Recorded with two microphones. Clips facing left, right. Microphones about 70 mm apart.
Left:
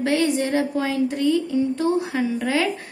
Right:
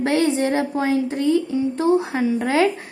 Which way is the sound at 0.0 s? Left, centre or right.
Right.